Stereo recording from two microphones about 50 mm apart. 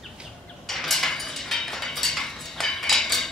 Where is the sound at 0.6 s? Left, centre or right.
Centre.